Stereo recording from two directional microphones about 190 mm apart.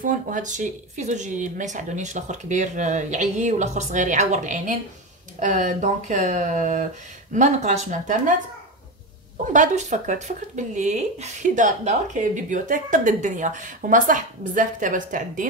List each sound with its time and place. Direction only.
0.0 s speech: 45° right (ahead or behind)
9.5 s speech: 40° right (ahead or behind)